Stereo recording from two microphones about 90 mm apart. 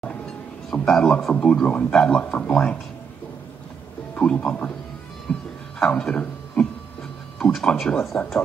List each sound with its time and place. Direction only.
0.7 s a man's voice: 10° left (ahead or behind)
4.1 s a man's voice: 15° left (ahead or behind)
5.3 s music: 15° left (ahead or behind)
5.8 s a sound: 10° left (ahead or behind)